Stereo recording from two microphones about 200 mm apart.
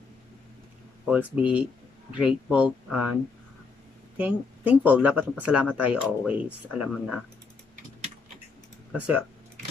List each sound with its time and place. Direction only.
1.0 s speech: 5° right (ahead or behind)
4.2 s speech: 10° right (ahead or behind)
8.9 s speech: 5° right (ahead or behind)